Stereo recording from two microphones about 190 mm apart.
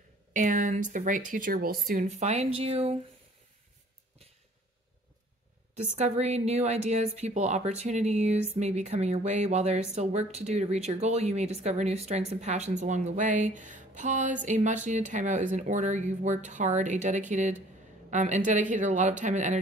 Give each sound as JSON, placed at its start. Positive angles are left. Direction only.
{"t": 0.3, "sound": "speech", "side_deg": -45}
{"t": 5.9, "sound": "speech", "side_deg": -35}